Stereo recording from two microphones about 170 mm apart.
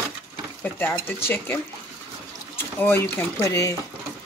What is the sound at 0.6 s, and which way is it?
Speech, 15° left (ahead or behind).